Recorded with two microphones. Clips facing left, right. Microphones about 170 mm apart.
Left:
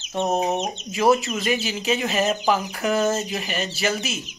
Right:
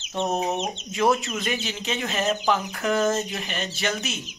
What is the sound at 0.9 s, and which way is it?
Speech, 5° left (ahead or behind).